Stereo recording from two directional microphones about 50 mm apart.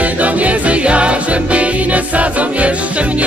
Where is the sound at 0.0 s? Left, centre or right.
Right.